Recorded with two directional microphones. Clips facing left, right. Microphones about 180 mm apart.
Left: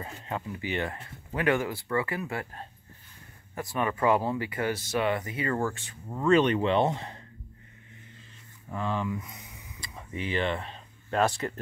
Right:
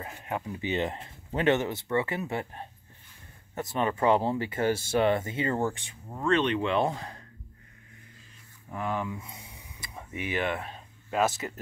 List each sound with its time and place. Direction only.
0.0 s speech: 15° right (ahead or behind)
6.2 s speech: 5° left (ahead or behind)
6.6 s speech: 35° left (ahead or behind)
8.6 s speech: 10° right (ahead or behind)
9.2 s a sound: 25° right (ahead or behind)
9.9 s speech: 10° right (ahead or behind)